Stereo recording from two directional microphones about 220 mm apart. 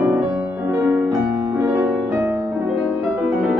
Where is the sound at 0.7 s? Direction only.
5° right (ahead or behind).